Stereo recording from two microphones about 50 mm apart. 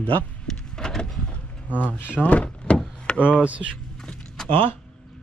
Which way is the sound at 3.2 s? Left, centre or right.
Right.